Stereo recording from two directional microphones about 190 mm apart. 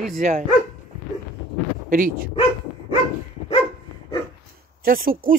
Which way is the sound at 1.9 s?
45° right (ahead or behind).